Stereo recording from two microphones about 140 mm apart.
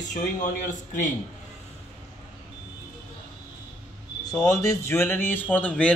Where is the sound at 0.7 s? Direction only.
65° left (ahead or behind).